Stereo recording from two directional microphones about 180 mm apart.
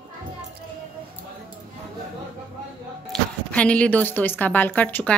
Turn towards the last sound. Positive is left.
turn(degrees=10)  # may be behind; listen again after turning